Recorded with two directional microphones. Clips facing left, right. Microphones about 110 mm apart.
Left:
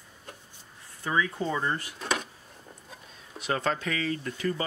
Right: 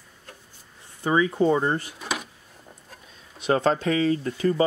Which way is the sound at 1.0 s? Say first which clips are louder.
Right 8 dB; 25° right (ahead or behind).